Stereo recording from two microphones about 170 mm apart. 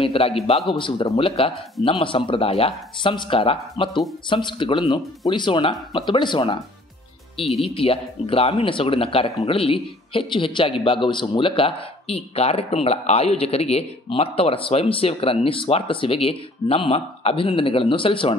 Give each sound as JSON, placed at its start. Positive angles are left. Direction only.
{"t": 0.0, "sound": "speech", "side_deg": 35}
{"t": 7.6, "sound": "speech", "side_deg": 35}